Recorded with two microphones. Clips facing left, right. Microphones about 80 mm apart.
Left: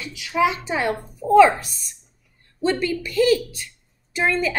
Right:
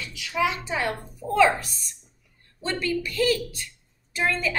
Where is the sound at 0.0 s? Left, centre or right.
Left.